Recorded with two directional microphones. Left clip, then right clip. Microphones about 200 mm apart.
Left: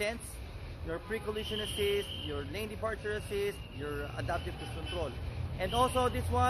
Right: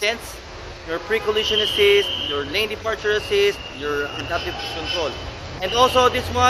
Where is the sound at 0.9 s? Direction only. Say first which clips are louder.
Right 17 dB; 20° left (ahead or behind).